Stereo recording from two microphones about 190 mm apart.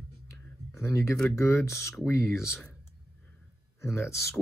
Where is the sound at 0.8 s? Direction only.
15° left (ahead or behind).